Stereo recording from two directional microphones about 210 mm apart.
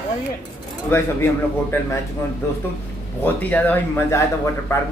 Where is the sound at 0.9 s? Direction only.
10° left (ahead or behind).